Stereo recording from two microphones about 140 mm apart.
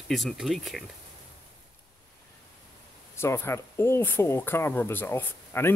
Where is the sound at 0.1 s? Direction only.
Centre (ahead or behind).